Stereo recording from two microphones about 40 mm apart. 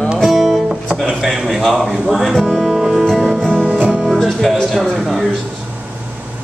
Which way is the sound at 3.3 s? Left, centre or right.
Left.